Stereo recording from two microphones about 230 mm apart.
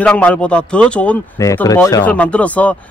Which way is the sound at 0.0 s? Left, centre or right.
Centre.